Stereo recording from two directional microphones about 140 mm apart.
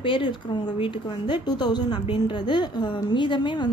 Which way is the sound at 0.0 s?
35° left (ahead or behind).